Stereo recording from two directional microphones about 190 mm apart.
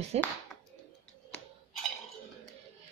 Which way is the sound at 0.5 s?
5° left (ahead or behind).